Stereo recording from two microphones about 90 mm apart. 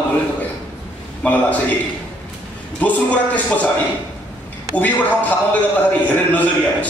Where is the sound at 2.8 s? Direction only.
15° left (ahead or behind).